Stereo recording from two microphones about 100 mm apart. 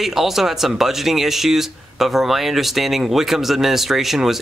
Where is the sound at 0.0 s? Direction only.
Centre (ahead or behind).